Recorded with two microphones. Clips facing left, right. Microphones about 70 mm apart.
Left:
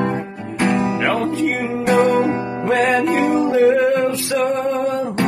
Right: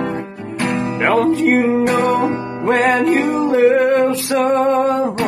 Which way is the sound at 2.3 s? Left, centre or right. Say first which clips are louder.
Left 1 dB; centre.